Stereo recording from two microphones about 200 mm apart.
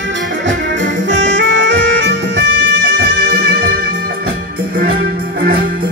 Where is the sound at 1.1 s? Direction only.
65° right (ahead or behind).